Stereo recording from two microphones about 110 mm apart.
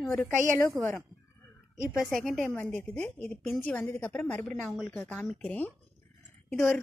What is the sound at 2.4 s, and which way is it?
Speech, 20° left (ahead or behind).